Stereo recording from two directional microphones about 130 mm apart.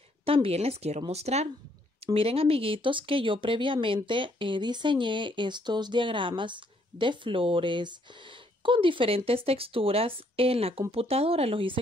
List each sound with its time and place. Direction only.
0.2 s speech: 45° right (ahead or behind)